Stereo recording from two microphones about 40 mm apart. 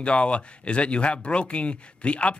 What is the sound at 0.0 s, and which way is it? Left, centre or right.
Speech, left.